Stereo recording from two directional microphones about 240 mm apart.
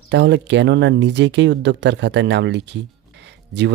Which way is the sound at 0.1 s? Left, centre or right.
Right.